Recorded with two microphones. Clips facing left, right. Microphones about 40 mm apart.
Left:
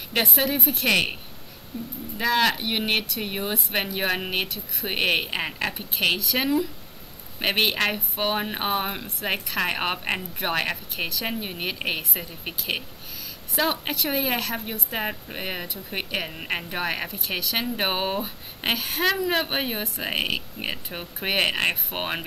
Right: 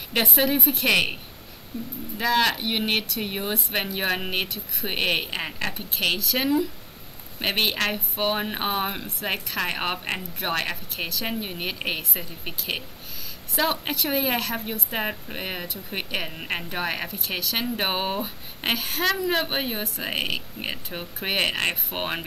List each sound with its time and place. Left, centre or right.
0.1 s speech: centre
1.7 s speech: centre
2.1 s speech: centre